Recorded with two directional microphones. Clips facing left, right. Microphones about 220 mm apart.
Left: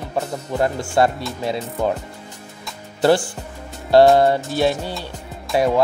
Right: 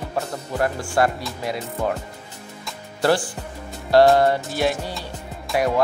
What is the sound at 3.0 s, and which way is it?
Speech, 25° left (ahead or behind).